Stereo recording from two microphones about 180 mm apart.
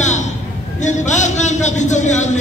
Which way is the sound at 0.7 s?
40° left (ahead or behind).